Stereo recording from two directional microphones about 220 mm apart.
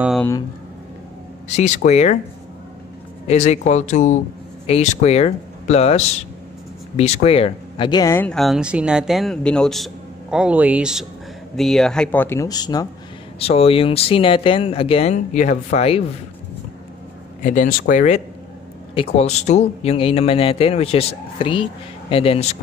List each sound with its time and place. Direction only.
1.5 s speech: 30° left (ahead or behind)
3.3 s speech: 30° left (ahead or behind)
17.4 s speech: 35° left (ahead or behind)